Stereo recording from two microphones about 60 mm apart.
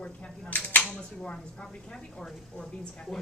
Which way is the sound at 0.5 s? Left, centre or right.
Left.